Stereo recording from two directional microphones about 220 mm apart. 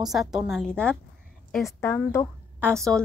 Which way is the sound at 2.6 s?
15° right (ahead or behind).